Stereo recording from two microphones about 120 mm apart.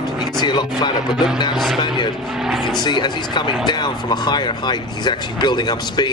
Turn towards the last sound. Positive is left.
turn(degrees=40)  # may be behind; listen again after turning